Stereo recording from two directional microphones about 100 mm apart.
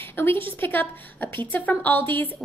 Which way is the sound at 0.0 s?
20° left (ahead or behind).